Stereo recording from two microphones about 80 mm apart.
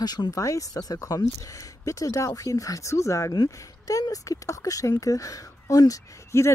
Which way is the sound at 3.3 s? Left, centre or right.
Left.